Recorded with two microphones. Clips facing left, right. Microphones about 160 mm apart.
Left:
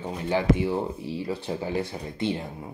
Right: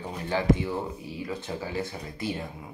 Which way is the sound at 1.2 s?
35° left (ahead or behind).